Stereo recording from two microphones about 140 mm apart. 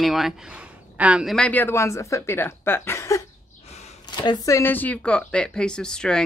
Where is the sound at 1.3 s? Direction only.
10° left (ahead or behind).